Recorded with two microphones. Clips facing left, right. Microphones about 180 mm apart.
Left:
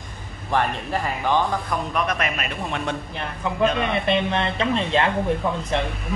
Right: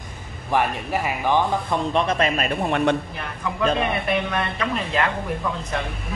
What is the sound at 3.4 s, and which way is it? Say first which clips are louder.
A woman's voice: even; 25° left (ahead or behind).